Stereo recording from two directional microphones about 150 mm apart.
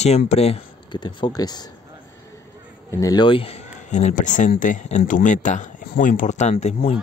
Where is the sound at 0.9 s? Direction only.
30° left (ahead or behind).